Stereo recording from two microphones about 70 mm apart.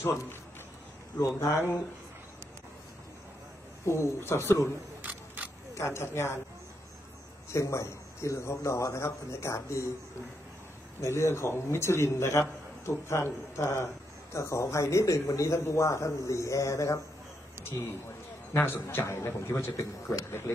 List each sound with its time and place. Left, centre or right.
0.0 s a man's voice: left
1.2 s speech: left
3.8 s a man's voice: left
5.0 s single-lens reflex camera: right
5.8 s a man's voice: left
7.5 s speech: left
11.0 s a man's voice: left
18.5 s a man's voice: left